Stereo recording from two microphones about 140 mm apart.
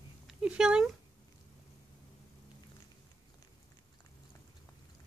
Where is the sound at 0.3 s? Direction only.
5° right (ahead or behind).